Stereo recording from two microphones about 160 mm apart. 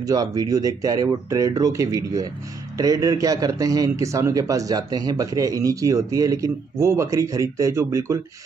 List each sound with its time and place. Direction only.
0.0 s a man's voice: 20° right (ahead or behind)